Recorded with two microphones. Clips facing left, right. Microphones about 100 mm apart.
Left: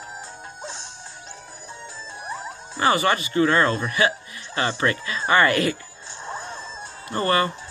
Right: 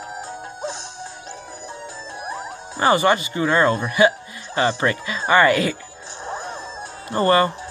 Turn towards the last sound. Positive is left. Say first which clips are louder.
# right 5 dB
turn(degrees=-30)  # may be behind; listen again after turning